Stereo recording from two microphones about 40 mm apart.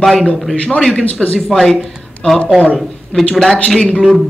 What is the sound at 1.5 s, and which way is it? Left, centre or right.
Speech, centre.